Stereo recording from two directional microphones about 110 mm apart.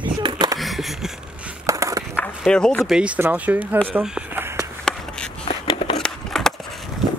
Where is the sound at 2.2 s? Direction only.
5° left (ahead or behind).